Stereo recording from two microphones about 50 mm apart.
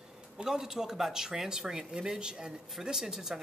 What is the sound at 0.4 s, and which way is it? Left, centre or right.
Speech, centre.